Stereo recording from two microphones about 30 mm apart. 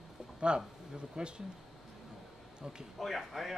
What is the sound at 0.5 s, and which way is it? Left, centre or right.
Speech, right.